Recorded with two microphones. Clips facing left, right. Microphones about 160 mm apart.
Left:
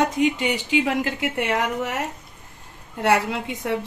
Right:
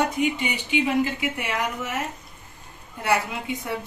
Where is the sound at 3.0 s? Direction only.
80° left.